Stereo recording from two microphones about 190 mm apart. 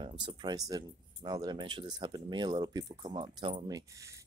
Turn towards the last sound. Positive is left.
turn(degrees=-15)  # may be behind; listen again after turning